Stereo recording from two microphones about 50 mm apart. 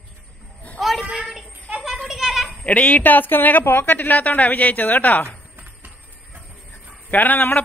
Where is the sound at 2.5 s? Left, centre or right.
Left.